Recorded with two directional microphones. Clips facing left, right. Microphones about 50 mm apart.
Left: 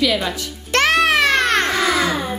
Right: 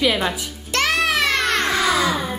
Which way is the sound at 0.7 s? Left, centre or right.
Left.